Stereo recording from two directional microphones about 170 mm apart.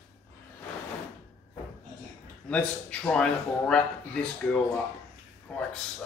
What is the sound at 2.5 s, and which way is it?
Speech, 5° left (ahead or behind).